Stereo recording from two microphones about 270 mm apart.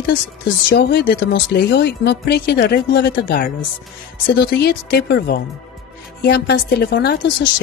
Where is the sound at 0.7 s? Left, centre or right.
Left.